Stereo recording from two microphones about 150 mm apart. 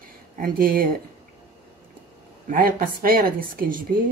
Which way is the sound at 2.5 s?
70° right (ahead or behind).